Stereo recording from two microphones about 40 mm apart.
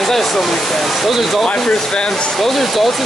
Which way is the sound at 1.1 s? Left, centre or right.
Centre.